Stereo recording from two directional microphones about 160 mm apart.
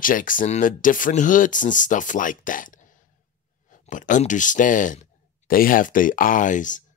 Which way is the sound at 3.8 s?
55° left (ahead or behind).